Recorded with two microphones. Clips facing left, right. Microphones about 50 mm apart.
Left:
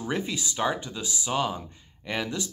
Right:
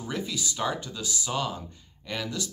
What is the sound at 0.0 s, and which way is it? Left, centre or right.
Speech, left.